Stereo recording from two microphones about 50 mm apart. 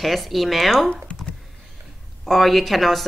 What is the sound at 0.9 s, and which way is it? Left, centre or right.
Computer keyboard, left.